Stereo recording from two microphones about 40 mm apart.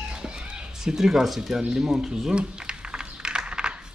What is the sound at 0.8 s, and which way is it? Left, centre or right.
Speech, centre.